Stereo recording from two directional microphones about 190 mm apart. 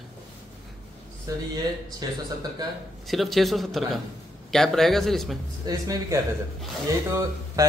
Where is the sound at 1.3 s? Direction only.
20° right (ahead or behind).